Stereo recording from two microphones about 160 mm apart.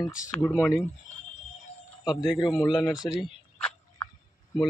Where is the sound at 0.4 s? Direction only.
15° left (ahead or behind).